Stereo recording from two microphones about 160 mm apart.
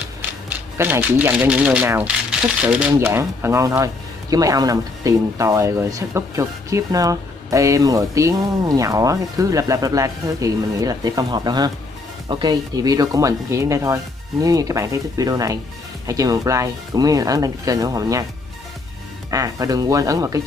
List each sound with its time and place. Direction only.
0.7 s speech: 15° right (ahead or behind)
19.3 s speech: 20° right (ahead or behind)